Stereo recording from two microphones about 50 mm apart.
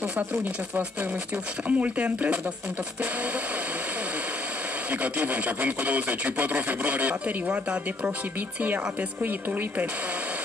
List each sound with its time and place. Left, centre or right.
0.0 s speech: right
4.9 s speech: right